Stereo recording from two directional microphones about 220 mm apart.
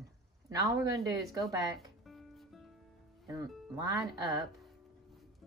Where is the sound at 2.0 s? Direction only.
Centre (ahead or behind).